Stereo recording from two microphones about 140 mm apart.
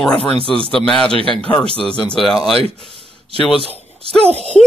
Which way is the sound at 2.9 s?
40° left (ahead or behind).